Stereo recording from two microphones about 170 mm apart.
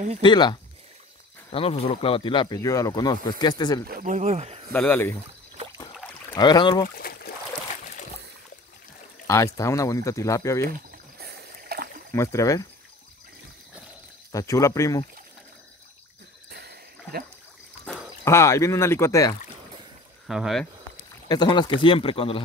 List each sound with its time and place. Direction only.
0.2 s speech: 25° left (ahead or behind)
3.9 s speech: 45° right (ahead or behind)
4.7 s speech: 10° left (ahead or behind)
6.3 s speech: 25° left (ahead or behind)
7.0 s boat: 65° left (ahead or behind)
9.3 s speech: 15° left (ahead or behind)
10.7 s rowboat: 65° right (ahead or behind)
12.1 s speech: 15° left (ahead or behind)
14.3 s speech: 20° left (ahead or behind)
16.4 s a sound: 70° right (ahead or behind)
18.2 s speech: 15° left (ahead or behind)
20.2 s speech: centre (ahead or behind)
21.3 s speech: 25° left (ahead or behind)